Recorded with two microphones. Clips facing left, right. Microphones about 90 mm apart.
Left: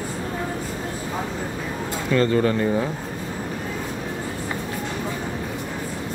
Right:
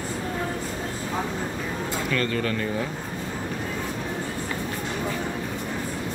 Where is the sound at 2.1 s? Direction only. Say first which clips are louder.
Left 9 dB; 25° left (ahead or behind).